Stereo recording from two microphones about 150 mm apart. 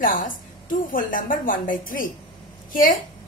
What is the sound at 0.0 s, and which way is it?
A woman's voice, 65° left (ahead or behind).